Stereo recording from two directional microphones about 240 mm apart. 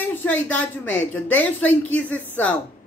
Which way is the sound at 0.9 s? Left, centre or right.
Centre.